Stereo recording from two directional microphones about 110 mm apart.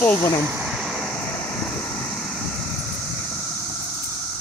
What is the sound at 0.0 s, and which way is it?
Speech, 15° left (ahead or behind).